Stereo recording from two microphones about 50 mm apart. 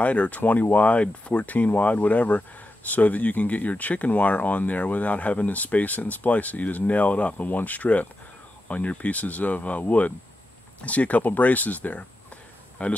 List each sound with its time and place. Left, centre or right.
0.0 s speech: left